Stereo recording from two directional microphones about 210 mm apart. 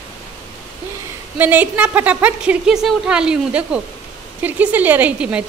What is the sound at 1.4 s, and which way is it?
Speech, 10° right (ahead or behind).